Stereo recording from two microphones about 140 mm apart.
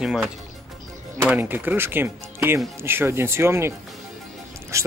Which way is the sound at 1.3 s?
15° right (ahead or behind).